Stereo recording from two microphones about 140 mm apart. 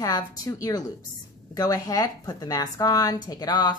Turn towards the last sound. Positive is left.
turn(degrees=30)  # may be behind; listen again after turning